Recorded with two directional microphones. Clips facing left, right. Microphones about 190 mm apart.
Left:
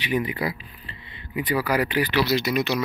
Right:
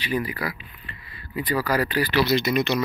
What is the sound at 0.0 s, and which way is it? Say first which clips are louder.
Speech: left 2 dB; 20° left (ahead or behind).